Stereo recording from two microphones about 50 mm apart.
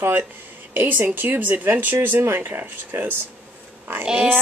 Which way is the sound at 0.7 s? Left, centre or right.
Right.